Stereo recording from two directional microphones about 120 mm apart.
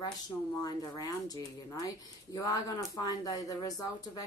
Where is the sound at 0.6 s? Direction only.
30° left (ahead or behind).